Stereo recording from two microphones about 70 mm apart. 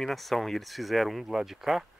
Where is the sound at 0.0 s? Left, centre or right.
Centre.